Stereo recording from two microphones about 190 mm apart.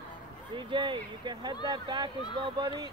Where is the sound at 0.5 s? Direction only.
25° right (ahead or behind).